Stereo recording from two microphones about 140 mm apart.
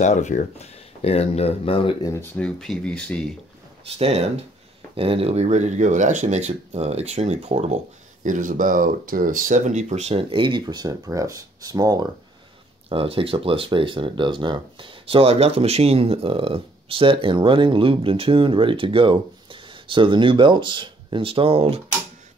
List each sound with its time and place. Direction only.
0.0 s speech: 60° left (ahead or behind); by 2.0 s 40° left (ahead or behind)
2.3 s speech: 5° left (ahead or behind)
3.8 s speech: 45° right (ahead or behind)
10.3 s speech: 35° right (ahead or behind)
12.9 s speech: 40° right (ahead or behind)